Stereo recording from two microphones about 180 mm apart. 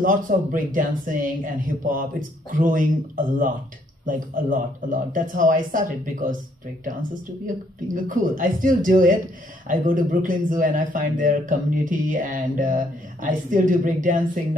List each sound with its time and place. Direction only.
0.0 s speech: 50° right (ahead or behind)